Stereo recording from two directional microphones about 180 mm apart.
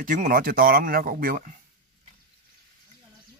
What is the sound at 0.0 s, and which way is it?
Speech, 50° right (ahead or behind).